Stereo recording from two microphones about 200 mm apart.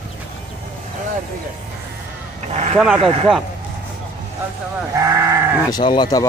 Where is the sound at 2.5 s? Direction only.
35° right (ahead or behind).